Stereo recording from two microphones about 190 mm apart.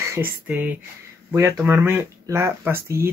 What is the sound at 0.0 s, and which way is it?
Speech, 15° right (ahead or behind).